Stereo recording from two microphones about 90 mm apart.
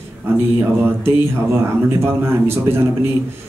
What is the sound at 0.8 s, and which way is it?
A man's voice, 25° right (ahead or behind).